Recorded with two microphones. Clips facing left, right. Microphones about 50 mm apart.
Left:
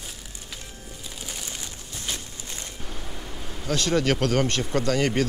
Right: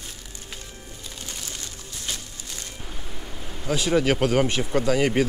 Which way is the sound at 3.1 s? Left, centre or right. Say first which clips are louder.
Even; centre.